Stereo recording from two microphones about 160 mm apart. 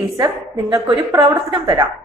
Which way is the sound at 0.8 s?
25° right (ahead or behind).